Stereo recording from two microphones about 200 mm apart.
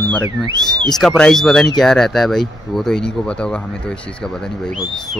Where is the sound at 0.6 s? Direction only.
Centre (ahead or behind).